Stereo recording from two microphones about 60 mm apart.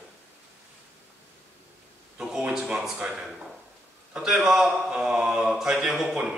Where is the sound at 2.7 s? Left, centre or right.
Centre.